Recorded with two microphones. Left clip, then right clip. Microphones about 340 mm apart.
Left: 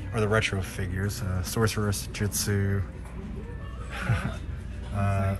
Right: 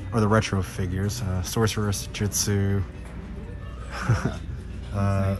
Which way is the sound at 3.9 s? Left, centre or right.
Centre.